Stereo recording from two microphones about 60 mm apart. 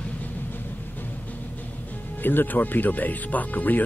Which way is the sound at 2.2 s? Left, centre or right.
Left.